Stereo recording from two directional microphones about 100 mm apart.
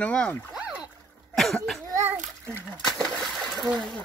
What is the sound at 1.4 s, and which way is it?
Cough, 5° left (ahead or behind).